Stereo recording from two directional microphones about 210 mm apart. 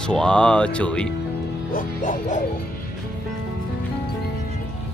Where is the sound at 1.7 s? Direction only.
40° left (ahead or behind).